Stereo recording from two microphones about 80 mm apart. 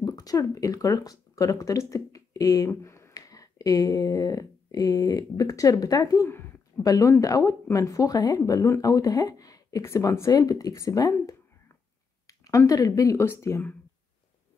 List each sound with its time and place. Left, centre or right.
0.0 s speech: left
13.2 s speech: left